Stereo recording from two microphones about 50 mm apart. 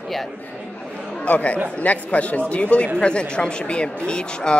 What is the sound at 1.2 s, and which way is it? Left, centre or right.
Speech, left.